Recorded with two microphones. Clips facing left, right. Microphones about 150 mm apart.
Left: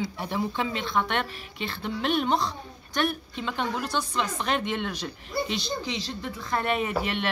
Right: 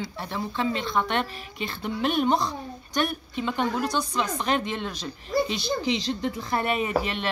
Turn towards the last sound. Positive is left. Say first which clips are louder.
# right 1 dB
turn(degrees=0)  # may be behind; listen again after turning